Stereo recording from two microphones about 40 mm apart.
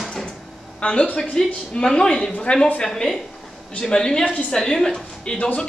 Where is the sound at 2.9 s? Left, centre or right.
Centre.